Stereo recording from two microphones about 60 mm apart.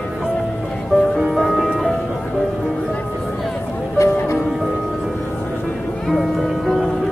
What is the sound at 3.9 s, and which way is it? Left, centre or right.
Music, left.